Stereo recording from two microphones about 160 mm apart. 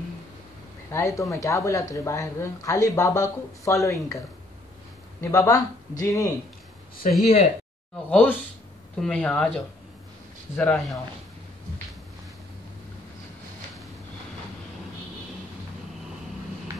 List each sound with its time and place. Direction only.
0.9 s speech: 20° left (ahead or behind)
5.2 s speech: 20° left (ahead or behind)
7.0 s speech: 50° left (ahead or behind)
8.1 s speech: 10° left (ahead or behind)